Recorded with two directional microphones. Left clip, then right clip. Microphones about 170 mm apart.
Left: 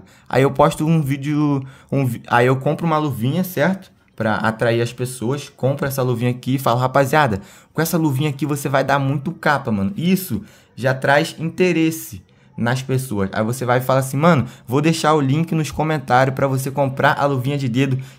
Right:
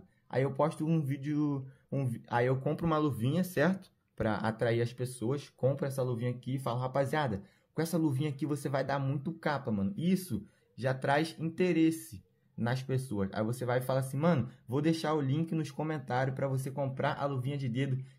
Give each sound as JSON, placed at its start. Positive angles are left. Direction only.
{"t": 0.3, "sound": "speech", "side_deg": 25}
{"t": 2.7, "sound": "speech", "side_deg": 0}